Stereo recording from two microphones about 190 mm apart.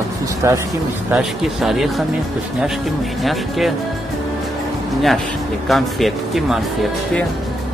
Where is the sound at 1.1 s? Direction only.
Centre (ahead or behind).